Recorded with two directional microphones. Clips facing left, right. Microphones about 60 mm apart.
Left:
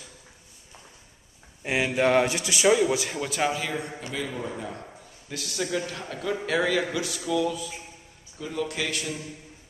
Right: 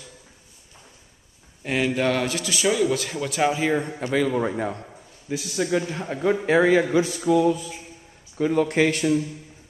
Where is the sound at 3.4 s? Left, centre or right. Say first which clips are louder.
Right 9 dB; right.